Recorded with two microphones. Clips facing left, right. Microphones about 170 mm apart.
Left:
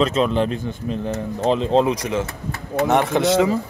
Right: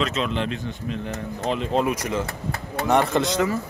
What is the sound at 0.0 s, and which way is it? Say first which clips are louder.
Speech: left 6 dB; 35° left (ahead or behind).